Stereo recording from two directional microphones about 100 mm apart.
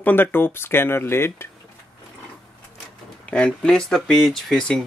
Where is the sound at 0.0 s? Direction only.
20° left (ahead or behind).